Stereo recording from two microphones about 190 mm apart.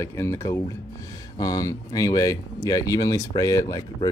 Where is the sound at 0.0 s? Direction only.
15° left (ahead or behind).